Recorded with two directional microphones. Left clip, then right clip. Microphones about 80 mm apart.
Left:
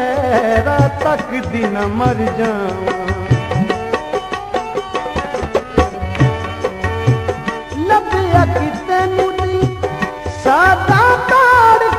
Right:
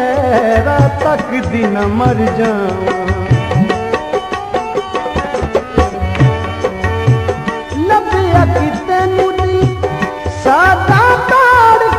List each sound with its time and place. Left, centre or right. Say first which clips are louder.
0.0 s music: right 3 dB; right